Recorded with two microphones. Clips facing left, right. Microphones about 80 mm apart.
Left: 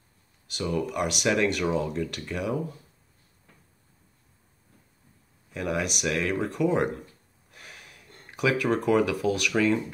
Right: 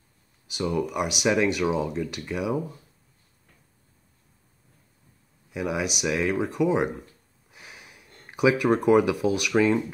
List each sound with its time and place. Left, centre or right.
0.5 s speech: centre
5.5 s speech: centre
7.5 s gasp: centre
9.4 s speech: centre